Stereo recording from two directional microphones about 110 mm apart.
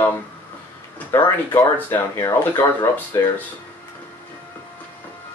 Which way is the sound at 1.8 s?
20° left (ahead or behind).